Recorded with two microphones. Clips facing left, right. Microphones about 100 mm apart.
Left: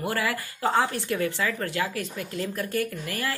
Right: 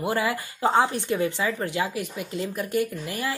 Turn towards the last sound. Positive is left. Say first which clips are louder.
# right 1 dB
turn(degrees=-20)  # may be behind; listen again after turning